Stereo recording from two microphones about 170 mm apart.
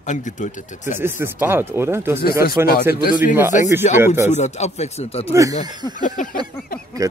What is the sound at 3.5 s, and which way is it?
Speech, 45° left (ahead or behind).